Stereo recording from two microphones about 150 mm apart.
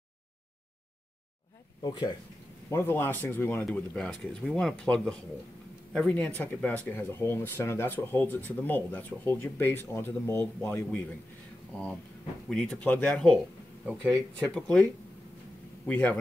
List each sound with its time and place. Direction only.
1.8 s speech: 30° left (ahead or behind)
2.7 s speech: 15° left (ahead or behind)
12.4 s speech: 5° left (ahead or behind)
14.4 s speech: 10° left (ahead or behind)
15.9 s speech: 15° left (ahead or behind)